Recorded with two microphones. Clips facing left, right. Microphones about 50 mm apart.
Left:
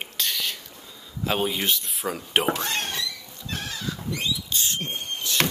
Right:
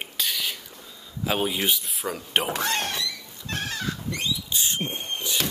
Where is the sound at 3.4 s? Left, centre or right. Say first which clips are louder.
Right 2 dB; right.